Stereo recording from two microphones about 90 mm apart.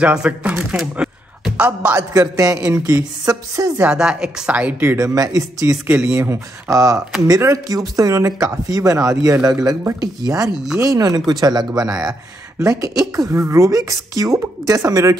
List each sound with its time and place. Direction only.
0.0 s a woman's voice: 10° right (ahead or behind)
0.9 s a sound: 10° right (ahead or behind)
2.0 s speech: 40° right (ahead or behind)
3.8 s a woman's voice: 10° right (ahead or behind)
4.9 s speech: 40° right (ahead or behind)
5.9 s a woman's voice: 10° right (ahead or behind)
6.1 s speech: 30° right (ahead or behind)